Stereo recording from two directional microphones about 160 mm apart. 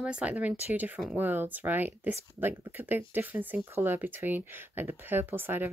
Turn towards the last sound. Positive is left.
turn(degrees=-10)  # may be behind; listen again after turning